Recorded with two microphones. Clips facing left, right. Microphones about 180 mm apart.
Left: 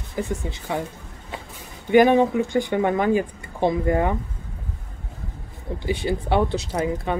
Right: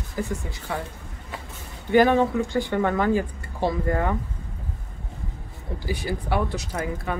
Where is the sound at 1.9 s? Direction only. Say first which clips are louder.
Left 3 dB; 15° left (ahead or behind).